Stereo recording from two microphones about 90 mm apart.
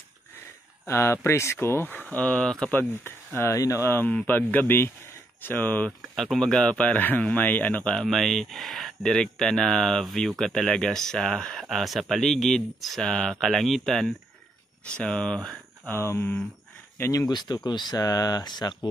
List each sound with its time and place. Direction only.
0.8 s speech: 30° left (ahead or behind); by 2.7 s 10° left (ahead or behind)
2.7 s speech: 25° left (ahead or behind)
3.5 s speech: 35° left (ahead or behind)
4.1 s speech: 15° left (ahead or behind)
5.9 s speech: 5° left (ahead or behind)
15.9 s speech: 25° left (ahead or behind)
17.3 s speech: 55° left (ahead or behind)